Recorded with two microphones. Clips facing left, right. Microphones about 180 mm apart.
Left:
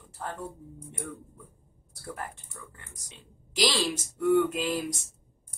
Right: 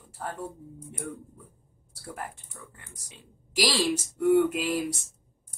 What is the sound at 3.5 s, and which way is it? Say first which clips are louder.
Speech: right 1 dB; 10° right (ahead or behind).